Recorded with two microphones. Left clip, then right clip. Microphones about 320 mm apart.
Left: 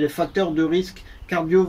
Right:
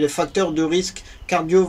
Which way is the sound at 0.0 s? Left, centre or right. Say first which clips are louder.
Right 2 dB; centre.